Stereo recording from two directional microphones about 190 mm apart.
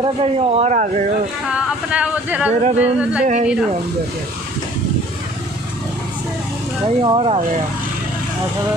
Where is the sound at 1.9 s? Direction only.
5° right (ahead or behind).